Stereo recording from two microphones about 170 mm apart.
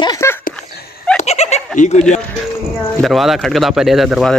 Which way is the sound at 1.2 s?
40° left (ahead or behind).